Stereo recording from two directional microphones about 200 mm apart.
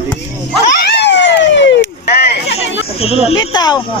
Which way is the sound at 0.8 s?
60° left (ahead or behind).